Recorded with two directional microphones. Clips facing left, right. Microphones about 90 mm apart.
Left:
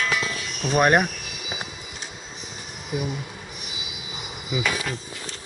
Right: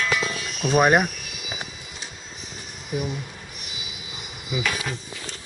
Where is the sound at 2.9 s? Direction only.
10° left (ahead or behind).